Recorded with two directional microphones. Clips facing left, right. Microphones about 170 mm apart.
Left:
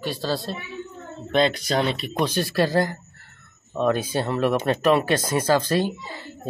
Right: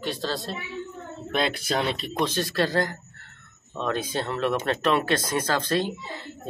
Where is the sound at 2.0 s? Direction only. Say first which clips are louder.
Left 2 dB; 10° left (ahead or behind).